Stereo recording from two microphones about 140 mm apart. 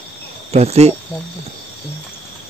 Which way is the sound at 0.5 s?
50° right (ahead or behind).